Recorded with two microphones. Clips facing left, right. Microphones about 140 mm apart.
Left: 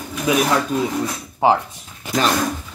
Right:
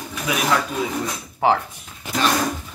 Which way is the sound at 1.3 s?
15° left (ahead or behind).